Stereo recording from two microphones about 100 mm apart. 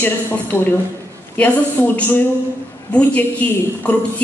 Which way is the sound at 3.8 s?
15° left (ahead or behind).